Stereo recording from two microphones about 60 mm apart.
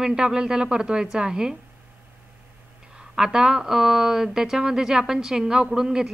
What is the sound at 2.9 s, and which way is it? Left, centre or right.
A woman's voice, centre.